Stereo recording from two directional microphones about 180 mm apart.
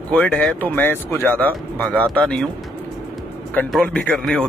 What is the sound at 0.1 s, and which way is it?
Speech, 5° left (ahead or behind).